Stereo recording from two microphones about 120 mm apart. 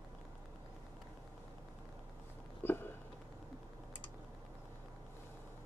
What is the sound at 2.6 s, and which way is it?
Hiccup, 15° left (ahead or behind).